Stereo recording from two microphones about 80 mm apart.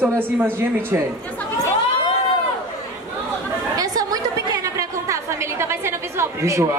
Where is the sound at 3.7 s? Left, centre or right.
Right.